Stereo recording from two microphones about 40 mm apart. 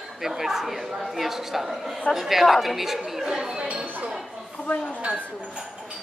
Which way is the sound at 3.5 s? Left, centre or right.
Right.